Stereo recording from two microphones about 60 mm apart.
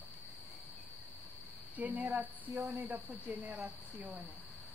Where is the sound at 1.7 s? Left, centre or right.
Right.